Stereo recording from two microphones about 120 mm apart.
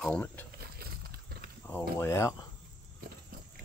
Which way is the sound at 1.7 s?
20° left (ahead or behind).